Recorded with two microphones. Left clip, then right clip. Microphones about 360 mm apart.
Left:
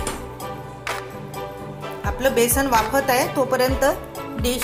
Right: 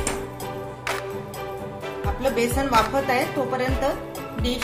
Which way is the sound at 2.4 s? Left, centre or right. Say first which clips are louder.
Left 1 dB; centre.